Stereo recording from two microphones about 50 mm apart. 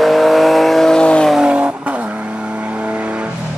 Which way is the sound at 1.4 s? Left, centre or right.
Right.